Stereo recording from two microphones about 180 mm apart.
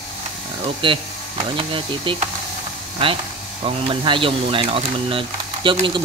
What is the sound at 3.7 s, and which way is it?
Speech, 30° right (ahead or behind).